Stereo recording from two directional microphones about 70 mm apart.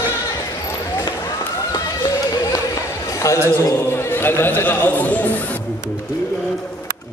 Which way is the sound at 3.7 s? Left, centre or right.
Left.